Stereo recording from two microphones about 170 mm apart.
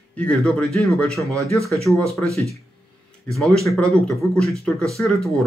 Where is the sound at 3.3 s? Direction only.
Centre (ahead or behind).